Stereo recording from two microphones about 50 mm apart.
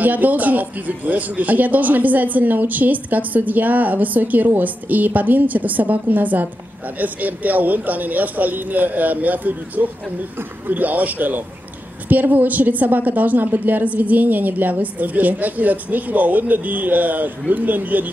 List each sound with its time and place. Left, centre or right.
0.0 s speech: right